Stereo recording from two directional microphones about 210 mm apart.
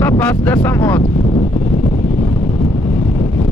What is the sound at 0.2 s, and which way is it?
Speech, 5° left (ahead or behind).